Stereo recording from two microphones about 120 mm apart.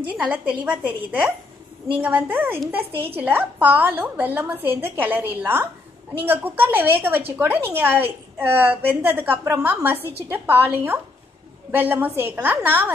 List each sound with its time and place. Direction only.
0.2 s a woman's voice: 10° right (ahead or behind)